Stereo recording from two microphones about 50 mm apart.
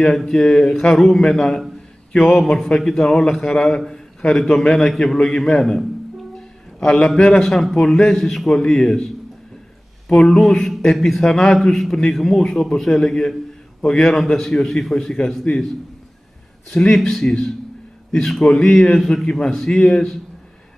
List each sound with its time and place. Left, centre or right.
0.0 s a man's voice: centre
16.7 s a man's voice: centre
19.8 s speech: centre